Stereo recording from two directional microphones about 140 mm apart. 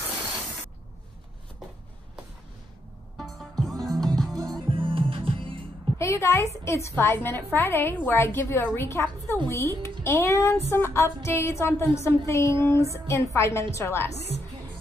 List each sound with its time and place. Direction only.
3.2 s music: centre (ahead or behind)
4.6 s music: 40° right (ahead or behind)
5.9 s a woman's voice: 20° left (ahead or behind)
10.7 s a sound: 20° left (ahead or behind)